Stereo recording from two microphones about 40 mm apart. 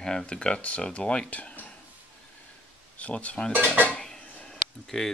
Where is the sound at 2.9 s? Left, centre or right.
Left.